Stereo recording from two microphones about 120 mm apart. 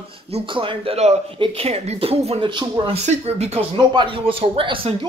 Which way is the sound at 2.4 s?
40° right (ahead or behind).